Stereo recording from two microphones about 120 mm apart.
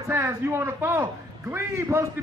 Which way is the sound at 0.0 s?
25° right (ahead or behind).